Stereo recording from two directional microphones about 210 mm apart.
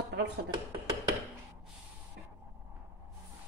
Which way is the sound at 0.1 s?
55° right (ahead or behind).